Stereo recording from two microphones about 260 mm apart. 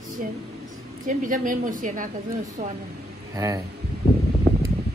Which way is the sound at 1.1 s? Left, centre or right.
Right.